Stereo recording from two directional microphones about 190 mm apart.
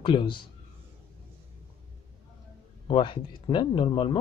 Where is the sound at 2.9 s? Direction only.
25° left (ahead or behind).